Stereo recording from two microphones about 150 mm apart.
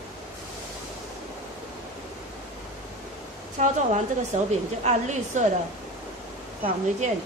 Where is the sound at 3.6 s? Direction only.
50° right (ahead or behind).